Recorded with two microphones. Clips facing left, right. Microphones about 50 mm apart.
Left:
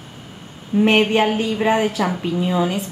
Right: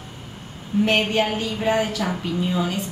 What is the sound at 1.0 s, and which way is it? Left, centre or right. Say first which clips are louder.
A woman's voice: left 5 dB; centre.